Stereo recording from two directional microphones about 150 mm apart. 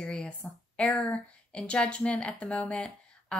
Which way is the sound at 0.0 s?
5° left (ahead or behind).